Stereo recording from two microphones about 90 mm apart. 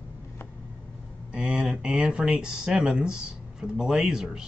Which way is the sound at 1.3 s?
5° right (ahead or behind).